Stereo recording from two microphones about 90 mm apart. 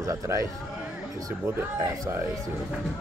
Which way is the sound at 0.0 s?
35° right (ahead or behind).